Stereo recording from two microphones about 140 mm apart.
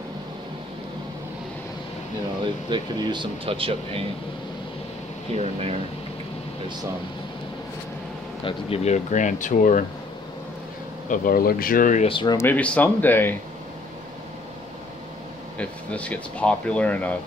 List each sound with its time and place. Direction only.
2.4 s speech: 35° right (ahead or behind)
5.3 s speech: 45° right (ahead or behind)
8.5 s speech: 45° left (ahead or behind); by 9.8 s 70° left (ahead or behind)
11.1 s speech: 90° left; by 12.1 s 65° left (ahead or behind)
12.1 s speech: 35° left (ahead or behind)
12.4 s speech: 10° left (ahead or behind)
15.5 s speech: 10° left (ahead or behind)